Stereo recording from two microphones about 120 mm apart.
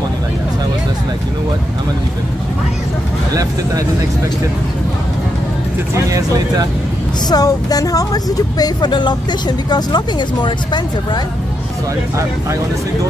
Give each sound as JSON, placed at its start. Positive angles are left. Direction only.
{"t": 6.0, "sound": "speech", "side_deg": -30}
{"t": 7.2, "sound": "speech", "side_deg": 30}